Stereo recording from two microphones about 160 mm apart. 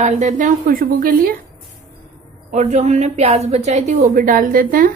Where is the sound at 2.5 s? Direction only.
45° right (ahead or behind).